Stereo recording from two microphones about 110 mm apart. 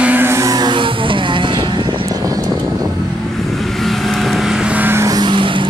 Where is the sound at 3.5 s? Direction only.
Centre (ahead or behind); by 5.0 s 15° right (ahead or behind).